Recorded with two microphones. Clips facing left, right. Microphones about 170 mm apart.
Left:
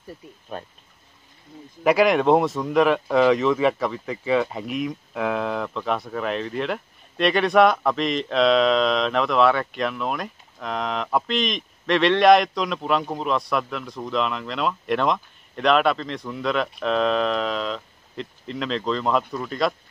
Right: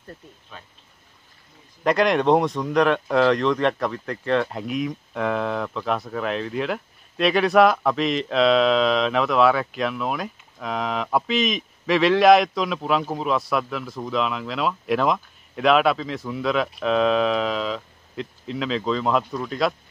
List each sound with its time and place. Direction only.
0.5 s speech: 50° left (ahead or behind)
1.8 s speech: 5° left (ahead or behind)